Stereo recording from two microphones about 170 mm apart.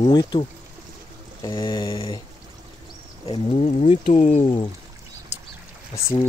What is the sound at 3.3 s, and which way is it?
Speech, 35° left (ahead or behind).